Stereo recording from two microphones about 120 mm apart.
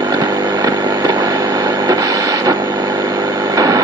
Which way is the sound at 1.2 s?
35° right (ahead or behind).